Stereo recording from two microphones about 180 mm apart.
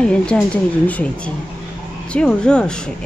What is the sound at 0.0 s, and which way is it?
A woman's voice, 5° left (ahead or behind).